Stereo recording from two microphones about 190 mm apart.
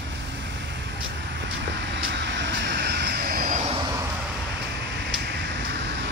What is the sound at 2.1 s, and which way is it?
Vehicle, 65° right (ahead or behind).